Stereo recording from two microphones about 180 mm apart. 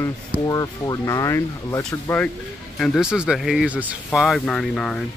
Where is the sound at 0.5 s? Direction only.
20° left (ahead or behind).